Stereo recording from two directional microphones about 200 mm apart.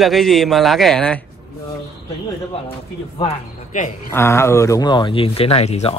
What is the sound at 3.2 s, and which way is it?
Speech, 35° left (ahead or behind).